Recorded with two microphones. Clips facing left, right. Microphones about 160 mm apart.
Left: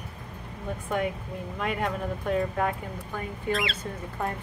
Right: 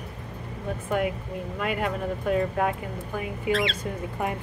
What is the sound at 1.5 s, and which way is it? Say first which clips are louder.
Speech: right 1 dB; 5° right (ahead or behind).